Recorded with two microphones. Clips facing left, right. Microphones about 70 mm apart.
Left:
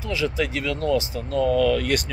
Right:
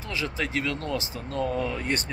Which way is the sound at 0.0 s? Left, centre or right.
Right.